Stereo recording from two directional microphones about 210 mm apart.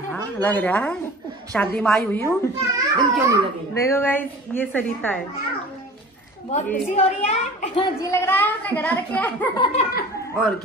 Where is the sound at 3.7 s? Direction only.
15° left (ahead or behind).